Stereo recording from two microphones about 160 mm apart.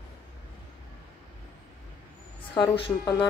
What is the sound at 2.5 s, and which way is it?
Speech, 30° left (ahead or behind).